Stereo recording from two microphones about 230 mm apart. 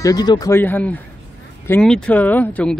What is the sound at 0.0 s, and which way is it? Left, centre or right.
Speech, centre.